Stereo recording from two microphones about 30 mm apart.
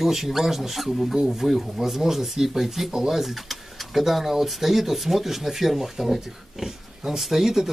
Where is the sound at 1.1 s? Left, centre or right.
Centre.